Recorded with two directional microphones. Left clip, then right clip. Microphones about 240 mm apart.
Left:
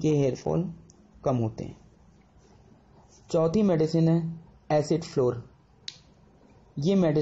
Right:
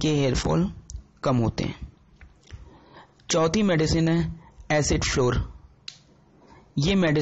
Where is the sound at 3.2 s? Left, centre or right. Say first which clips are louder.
Right 2 dB; right.